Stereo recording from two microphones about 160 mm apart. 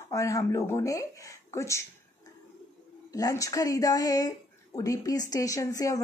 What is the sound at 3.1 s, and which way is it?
Speech, 20° left (ahead or behind).